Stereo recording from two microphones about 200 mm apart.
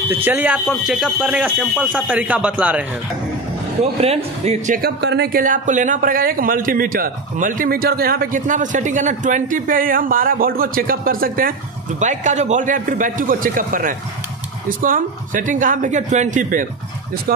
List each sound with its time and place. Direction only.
0.1 s speech: 10° right (ahead or behind)
4.0 s a man's voice: 30° right (ahead or behind)